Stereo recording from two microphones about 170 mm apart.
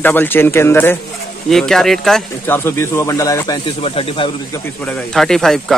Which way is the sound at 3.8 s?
30° left (ahead or behind).